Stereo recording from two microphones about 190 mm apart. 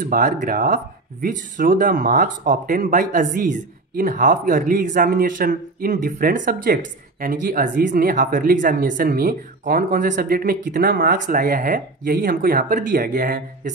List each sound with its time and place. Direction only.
0.1 s speech: 45° right (ahead or behind)